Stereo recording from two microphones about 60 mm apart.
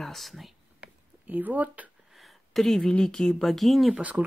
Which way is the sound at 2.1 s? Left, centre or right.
Centre.